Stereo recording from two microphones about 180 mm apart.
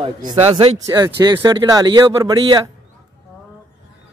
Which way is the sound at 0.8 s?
20° right (ahead or behind).